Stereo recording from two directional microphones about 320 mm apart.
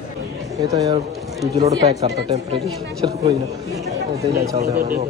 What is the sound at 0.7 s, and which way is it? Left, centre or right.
Speech, centre.